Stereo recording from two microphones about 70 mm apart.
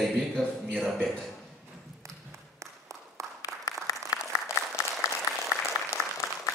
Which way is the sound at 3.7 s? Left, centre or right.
Left.